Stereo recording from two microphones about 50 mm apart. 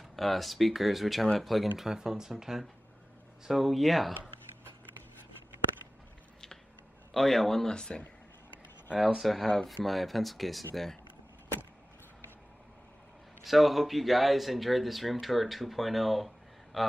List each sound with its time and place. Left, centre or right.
0.1 s speech: centre
1.8 s speech: centre
7.2 s speech: centre
7.7 s speech: centre
8.9 s speech: centre
13.4 s speech: centre